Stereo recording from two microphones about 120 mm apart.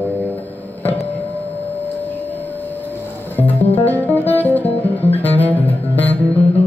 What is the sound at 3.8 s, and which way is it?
Music, 15° left (ahead or behind).